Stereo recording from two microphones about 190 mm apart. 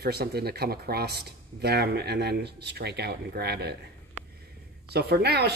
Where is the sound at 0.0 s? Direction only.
55° right (ahead or behind).